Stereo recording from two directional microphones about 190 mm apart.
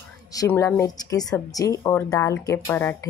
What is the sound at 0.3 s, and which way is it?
A woman's voice, 15° left (ahead or behind).